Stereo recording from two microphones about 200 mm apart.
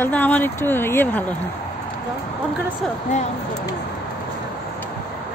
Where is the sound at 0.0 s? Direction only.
10° left (ahead or behind).